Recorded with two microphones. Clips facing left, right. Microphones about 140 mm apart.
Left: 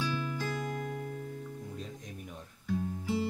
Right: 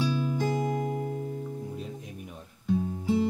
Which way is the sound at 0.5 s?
20° right (ahead or behind).